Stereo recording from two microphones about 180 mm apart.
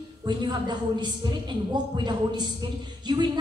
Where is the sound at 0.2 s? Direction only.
25° right (ahead or behind).